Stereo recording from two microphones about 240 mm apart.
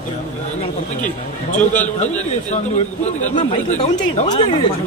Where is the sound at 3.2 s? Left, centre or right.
Left.